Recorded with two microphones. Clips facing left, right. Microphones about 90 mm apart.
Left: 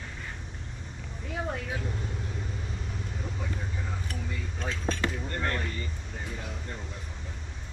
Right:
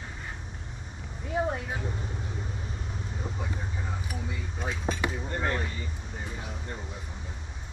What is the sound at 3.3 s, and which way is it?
Vehicle, 15° right (ahead or behind).